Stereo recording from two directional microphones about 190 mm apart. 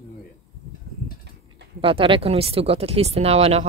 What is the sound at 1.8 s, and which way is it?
Speech, 30° right (ahead or behind).